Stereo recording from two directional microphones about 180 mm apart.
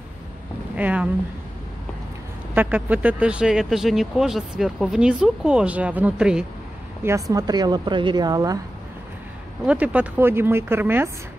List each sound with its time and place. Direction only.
0.7 s speech: 10° right (ahead or behind)
2.5 s speech: 10° right (ahead or behind)
7.1 s speech: 20° right (ahead or behind)
9.7 s speech: 5° right (ahead or behind)